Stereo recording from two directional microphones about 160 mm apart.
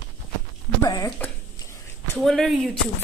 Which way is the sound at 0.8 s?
20° left (ahead or behind).